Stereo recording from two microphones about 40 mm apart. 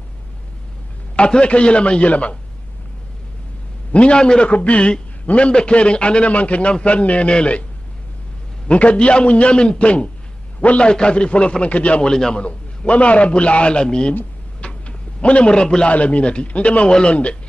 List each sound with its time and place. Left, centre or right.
1.1 s a man's voice: left
3.9 s a man's voice: left
4.5 s a man's voice: left
8.6 s a man's voice: left
12.0 s a man's voice: centre
12.4 s a man's voice: left
14.6 s a sound: left
15.9 s a man's voice: left